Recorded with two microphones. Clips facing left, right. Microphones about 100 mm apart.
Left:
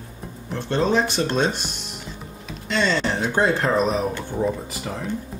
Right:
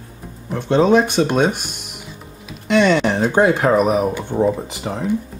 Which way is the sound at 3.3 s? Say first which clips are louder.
Right 5 dB; 15° right (ahead or behind).